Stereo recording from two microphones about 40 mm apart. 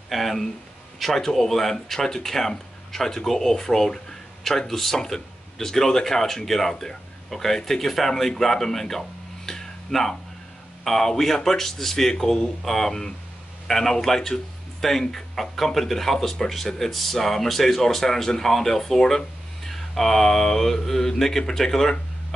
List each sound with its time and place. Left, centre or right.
0.1 s speech: centre
9.5 s a sound: centre
10.8 s speech: centre